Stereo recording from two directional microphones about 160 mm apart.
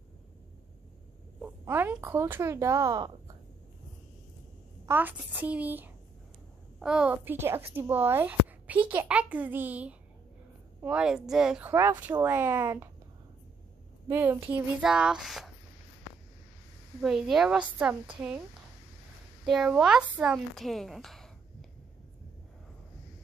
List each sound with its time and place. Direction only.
1.6 s speech: 15° right (ahead or behind)
4.8 s a woman's voice: 10° right (ahead or behind)
14.1 s speech: 15° right (ahead or behind)
17.0 s speech: 5° right (ahead or behind)
19.4 s a woman's voice: 5° right (ahead or behind)